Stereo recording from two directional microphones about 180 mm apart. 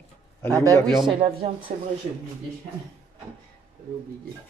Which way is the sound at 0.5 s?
20° right (ahead or behind).